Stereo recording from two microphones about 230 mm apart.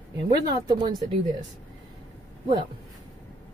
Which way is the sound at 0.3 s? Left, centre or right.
Centre.